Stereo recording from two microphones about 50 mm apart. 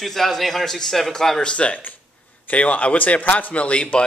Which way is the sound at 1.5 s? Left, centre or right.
Left.